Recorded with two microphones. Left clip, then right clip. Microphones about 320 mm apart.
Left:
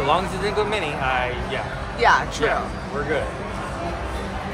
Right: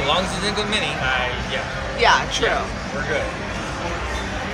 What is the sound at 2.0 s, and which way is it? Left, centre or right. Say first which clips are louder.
Speech: right 1 dB; centre.